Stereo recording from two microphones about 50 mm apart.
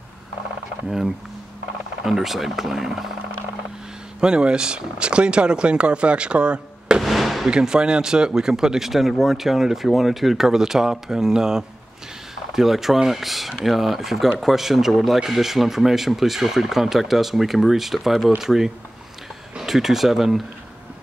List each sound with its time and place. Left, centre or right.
0.8 s speech: centre
4.2 s speech: centre
7.0 s firecracker: centre
7.4 s speech: centre